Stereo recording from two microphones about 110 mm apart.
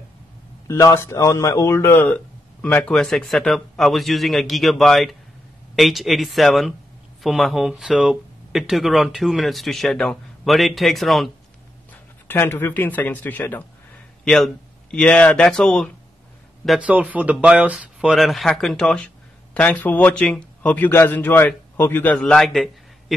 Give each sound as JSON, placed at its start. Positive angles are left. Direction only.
{"t": 0.7, "sound": "speech", "side_deg": 25}
{"t": 11.9, "sound": "speech", "side_deg": 20}
{"t": 14.2, "sound": "speech", "side_deg": 5}
{"t": 16.8, "sound": "a man's voice", "side_deg": -15}